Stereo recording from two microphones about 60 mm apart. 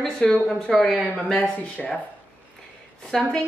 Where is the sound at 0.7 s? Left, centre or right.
Centre.